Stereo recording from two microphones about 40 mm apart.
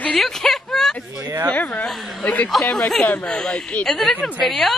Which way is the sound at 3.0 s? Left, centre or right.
Left.